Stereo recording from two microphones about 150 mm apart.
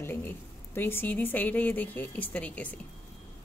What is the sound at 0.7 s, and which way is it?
A woman's voice, 15° left (ahead or behind).